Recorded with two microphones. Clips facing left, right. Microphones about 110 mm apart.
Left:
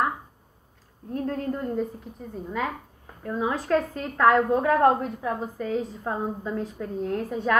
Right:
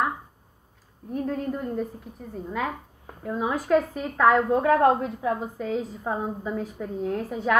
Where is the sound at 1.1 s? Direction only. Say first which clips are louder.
Even; 5° right (ahead or behind).